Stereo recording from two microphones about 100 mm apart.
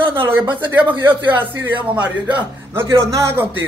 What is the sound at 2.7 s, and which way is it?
Speech, 25° right (ahead or behind).